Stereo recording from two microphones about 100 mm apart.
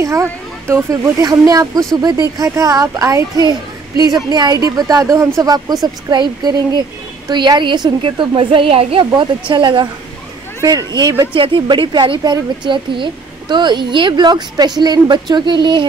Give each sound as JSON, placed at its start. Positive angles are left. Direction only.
{"t": 0.0, "sound": "a child's voice", "side_deg": -30}
{"t": 3.4, "sound": "a child's voice", "side_deg": -40}
{"t": 5.5, "sound": "a woman's voice", "side_deg": -40}
{"t": 9.5, "sound": "a woman's voice", "side_deg": -55}
{"t": 10.6, "sound": "a child's voice", "side_deg": -35}
{"t": 11.3, "sound": "speech", "side_deg": -60}